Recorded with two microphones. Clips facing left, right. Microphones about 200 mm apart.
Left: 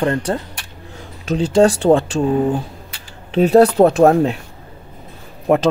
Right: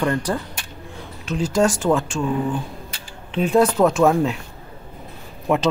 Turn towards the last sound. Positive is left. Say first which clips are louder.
# left 5 dB
turn(degrees=45)  # may be behind; listen again after turning